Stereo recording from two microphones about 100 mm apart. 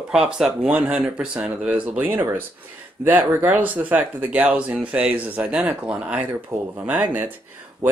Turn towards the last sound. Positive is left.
turn(degrees=-15)  # may be behind; listen again after turning